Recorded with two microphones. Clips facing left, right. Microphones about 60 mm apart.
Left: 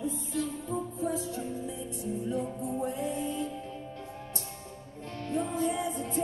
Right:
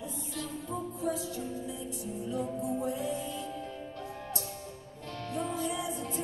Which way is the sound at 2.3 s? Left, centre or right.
Left.